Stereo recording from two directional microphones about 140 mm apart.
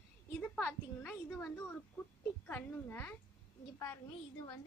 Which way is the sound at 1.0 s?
20° left (ahead or behind).